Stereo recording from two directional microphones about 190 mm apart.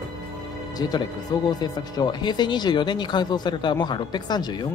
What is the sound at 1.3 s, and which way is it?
Speech, 20° left (ahead or behind).